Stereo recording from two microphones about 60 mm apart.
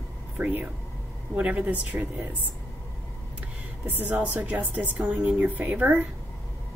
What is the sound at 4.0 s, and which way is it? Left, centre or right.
A woman's voice, right.